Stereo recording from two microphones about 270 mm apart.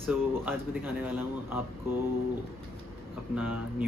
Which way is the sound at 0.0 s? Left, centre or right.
Centre.